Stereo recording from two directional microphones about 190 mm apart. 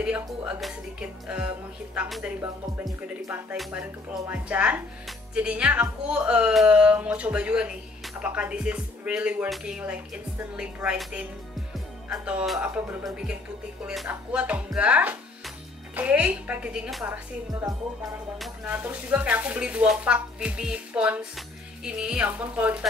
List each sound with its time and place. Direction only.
0.0 s speech: 5° right (ahead or behind)
2.4 s speech: 15° right (ahead or behind)
3.5 s speech: 5° right (ahead or behind)